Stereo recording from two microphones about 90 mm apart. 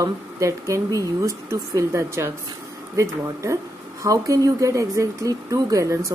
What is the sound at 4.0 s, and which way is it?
Speech, 40° right (ahead or behind).